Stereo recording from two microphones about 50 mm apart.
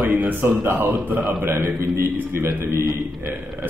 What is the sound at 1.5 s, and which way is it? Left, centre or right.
A man's voice, right.